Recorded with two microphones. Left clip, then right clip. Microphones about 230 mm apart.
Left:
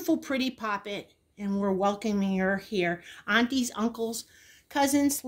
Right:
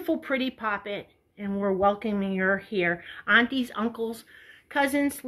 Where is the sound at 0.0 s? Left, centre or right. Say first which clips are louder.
Right 1 dB; left.